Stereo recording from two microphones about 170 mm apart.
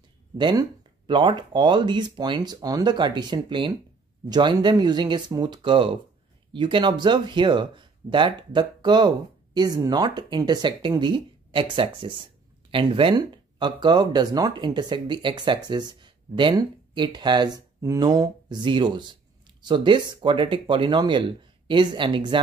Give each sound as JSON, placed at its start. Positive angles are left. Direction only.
{"t": 0.4, "sound": "speech", "side_deg": -30}